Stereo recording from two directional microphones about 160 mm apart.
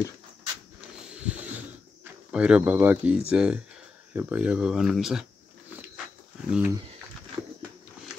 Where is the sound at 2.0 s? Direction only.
5° right (ahead or behind).